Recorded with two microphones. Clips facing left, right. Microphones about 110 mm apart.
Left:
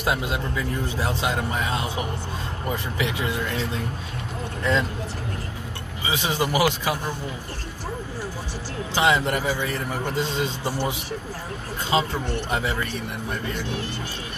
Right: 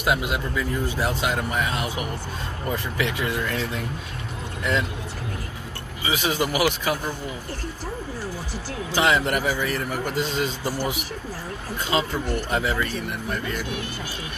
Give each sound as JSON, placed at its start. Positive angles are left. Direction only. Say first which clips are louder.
{"t": 0.0, "sound": "a man's voice", "louder": "right 1 dB", "side_deg": 30}
{"t": 6.0, "sound": "a man's voice", "louder": "right 1 dB", "side_deg": 20}
{"t": 8.9, "sound": "a man's voice", "louder": "even", "side_deg": 20}